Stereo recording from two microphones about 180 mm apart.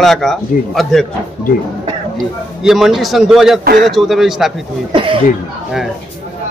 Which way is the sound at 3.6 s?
55° right (ahead or behind).